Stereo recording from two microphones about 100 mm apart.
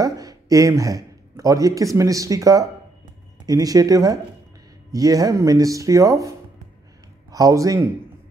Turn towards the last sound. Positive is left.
turn(degrees=-30)  # may be behind; listen again after turning